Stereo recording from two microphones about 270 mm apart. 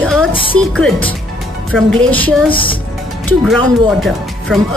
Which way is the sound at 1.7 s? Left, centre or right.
Centre.